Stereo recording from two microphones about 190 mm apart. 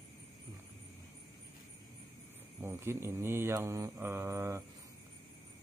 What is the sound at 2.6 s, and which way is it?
Speech, 15° right (ahead or behind).